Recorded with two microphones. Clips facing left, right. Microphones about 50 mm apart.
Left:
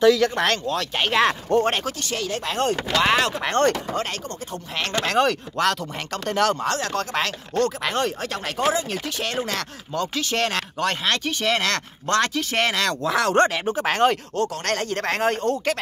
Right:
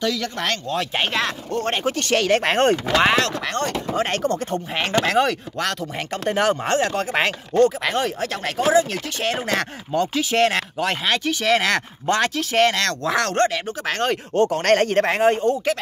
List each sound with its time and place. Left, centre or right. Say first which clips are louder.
0.0 s speech: left 7 dB; centre
0.7 s speech: right 1 dB; centre
1.2 s speech: left 5 dB; left
2.0 s speech: right 9 dB; right
2.4 s speech: right 6 dB; right
3.6 s speech: left 7 dB; left
4.7 s speech: right 4 dB; centre
5.0 s speech: right 1 dB; centre
6.2 s speech: right 1 dB; centre
7.8 s speech: right 2 dB; centre
12.4 s speech: right 4 dB; centre
13.3 s speech: left 2 dB; left
14.3 s speech: right 7 dB; right
15.0 s speech: right 4 dB; centre